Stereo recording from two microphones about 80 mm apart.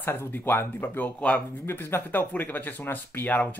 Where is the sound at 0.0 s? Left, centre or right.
Left.